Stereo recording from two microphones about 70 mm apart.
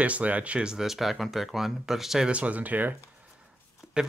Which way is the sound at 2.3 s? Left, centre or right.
Centre.